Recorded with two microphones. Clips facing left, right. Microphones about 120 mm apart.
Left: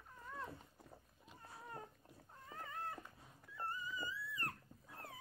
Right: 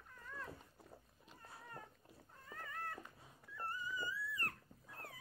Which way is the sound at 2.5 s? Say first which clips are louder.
Left 1 dB; 20° left (ahead or behind).